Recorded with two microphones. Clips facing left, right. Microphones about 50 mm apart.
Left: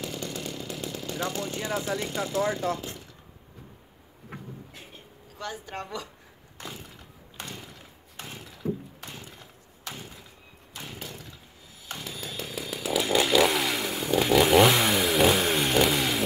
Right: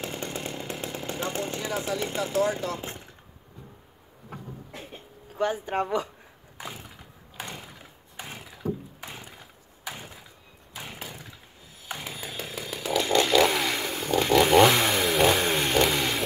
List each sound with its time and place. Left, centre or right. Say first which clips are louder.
0.0 s chainsaw: right 1 dB; right
2.8 s speech: right 1 dB; right
5.4 s speech: right 9 dB; right
6.6 s a sound: right 1 dB; centre
9.3 s a sound: even; centre
10.7 s chainsaw: right 1 dB; centre